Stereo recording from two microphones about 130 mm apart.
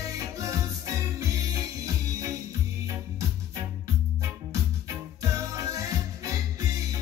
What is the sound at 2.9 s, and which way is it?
Music, 25° right (ahead or behind).